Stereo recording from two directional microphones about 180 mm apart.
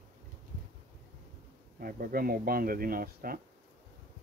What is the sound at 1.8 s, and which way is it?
Speech, 55° right (ahead or behind).